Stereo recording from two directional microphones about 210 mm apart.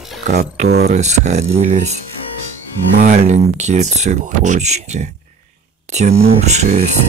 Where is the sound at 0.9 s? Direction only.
35° right (ahead or behind).